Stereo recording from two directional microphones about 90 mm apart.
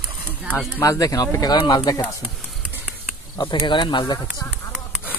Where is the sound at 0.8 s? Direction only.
40° left (ahead or behind).